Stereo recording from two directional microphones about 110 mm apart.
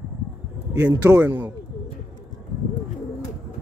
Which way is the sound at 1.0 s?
15° right (ahead or behind).